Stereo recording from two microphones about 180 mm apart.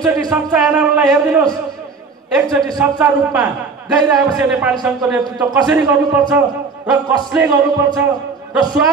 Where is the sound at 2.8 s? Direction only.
5° right (ahead or behind).